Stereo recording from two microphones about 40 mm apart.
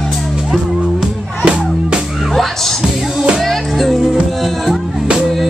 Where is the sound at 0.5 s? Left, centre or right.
Centre.